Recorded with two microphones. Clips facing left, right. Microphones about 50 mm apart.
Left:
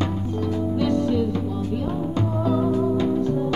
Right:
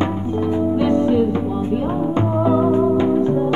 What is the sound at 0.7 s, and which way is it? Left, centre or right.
Music, right.